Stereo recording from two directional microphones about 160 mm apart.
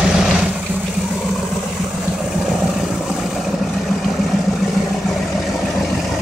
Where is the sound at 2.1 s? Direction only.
5° right (ahead or behind).